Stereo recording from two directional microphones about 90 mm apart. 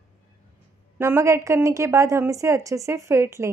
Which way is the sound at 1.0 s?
30° right (ahead or behind).